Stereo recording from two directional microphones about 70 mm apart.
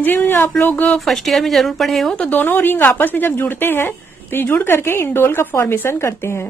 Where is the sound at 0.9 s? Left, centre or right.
Centre.